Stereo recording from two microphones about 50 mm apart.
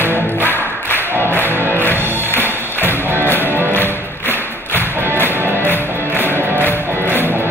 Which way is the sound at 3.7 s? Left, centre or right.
Left.